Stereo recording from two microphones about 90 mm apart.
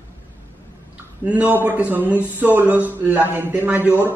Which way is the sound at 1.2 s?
15° right (ahead or behind).